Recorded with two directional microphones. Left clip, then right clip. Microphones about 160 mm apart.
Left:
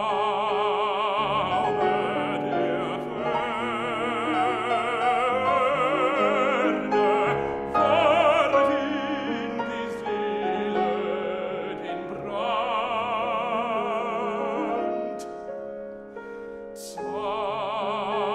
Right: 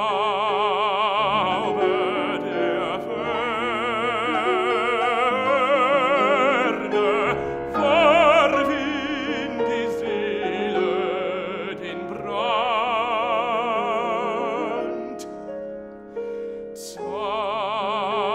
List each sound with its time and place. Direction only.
0.0 s music: 55° right (ahead or behind); by 11.3 s 75° right (ahead or behind)
12.4 s music: 65° right (ahead or behind)
17.3 s music: 55° right (ahead or behind)